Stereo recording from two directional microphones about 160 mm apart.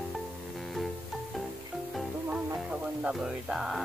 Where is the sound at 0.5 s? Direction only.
Centre (ahead or behind).